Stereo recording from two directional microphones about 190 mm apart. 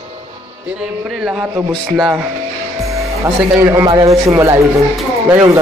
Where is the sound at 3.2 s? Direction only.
15° right (ahead or behind).